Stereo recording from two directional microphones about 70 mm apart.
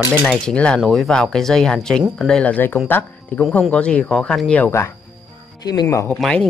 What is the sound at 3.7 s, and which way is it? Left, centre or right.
Speech, centre.